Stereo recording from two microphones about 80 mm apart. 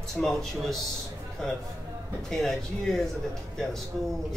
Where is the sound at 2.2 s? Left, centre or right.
Centre.